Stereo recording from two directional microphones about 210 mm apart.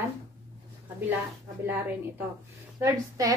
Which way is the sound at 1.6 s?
10° right (ahead or behind).